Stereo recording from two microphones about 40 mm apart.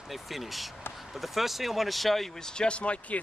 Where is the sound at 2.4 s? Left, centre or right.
Centre.